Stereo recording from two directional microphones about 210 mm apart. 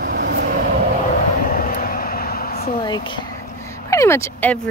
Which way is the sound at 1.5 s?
40° left (ahead or behind).